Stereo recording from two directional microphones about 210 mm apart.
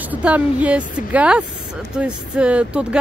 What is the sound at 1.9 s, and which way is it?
Speech, 5° right (ahead or behind).